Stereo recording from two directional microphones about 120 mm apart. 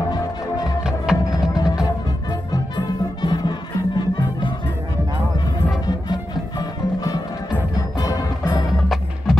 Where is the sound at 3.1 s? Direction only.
40° left (ahead or behind).